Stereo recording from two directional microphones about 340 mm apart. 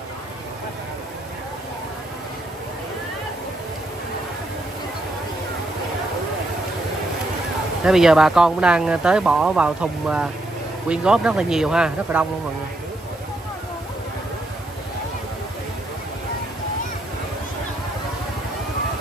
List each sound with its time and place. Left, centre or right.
7.8 s speech: centre